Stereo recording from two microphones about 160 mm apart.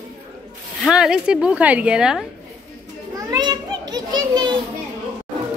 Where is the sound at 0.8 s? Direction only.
5° right (ahead or behind).